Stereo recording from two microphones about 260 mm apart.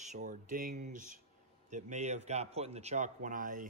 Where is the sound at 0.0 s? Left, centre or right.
Right.